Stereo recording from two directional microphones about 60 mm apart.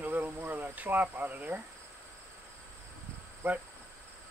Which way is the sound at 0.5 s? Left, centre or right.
Right.